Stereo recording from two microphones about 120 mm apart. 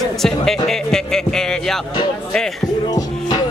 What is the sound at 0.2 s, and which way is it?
Music, 5° left (ahead or behind).